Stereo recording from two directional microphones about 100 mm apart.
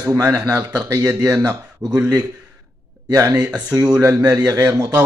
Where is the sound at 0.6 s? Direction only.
15° right (ahead or behind).